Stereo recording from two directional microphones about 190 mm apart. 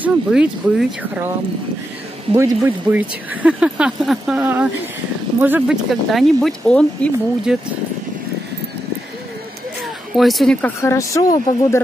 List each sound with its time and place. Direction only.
0.0 s speech: 5° right (ahead or behind)
2.3 s speech: 15° right (ahead or behind); by 7.5 s 5° left (ahead or behind)
10.1 s speech: centre (ahead or behind)
10.8 s speech: 15° left (ahead or behind)